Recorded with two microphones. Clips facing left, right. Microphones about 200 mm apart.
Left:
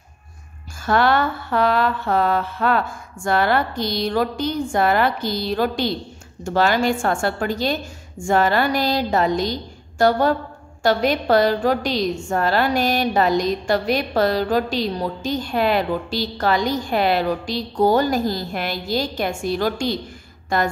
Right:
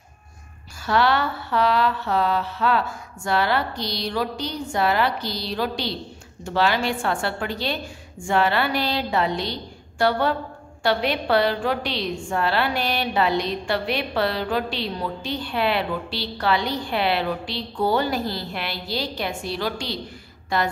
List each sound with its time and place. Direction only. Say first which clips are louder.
0.8 s a woman's voice: left 3 dB; 50° left (ahead or behind)